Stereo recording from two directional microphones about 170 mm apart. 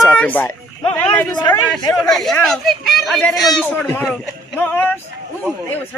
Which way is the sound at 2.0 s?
Centre (ahead or behind).